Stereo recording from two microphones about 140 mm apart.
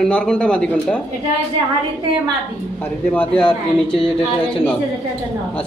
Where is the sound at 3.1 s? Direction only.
10° left (ahead or behind).